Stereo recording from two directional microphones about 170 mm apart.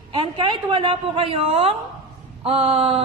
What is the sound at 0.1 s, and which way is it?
A woman's voice, 30° right (ahead or behind).